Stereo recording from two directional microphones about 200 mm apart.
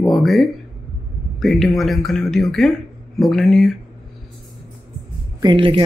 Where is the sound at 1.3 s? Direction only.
Centre (ahead or behind).